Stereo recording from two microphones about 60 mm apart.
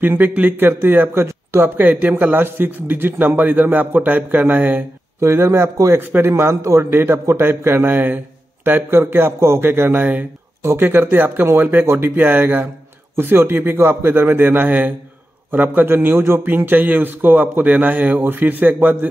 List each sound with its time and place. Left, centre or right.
0.0 s a man's voice: right
1.2 s speech: right
1.8 s a man's voice: right
5.2 s a man's voice: right
5.9 s a man's voice: right
6.3 s a man's voice: right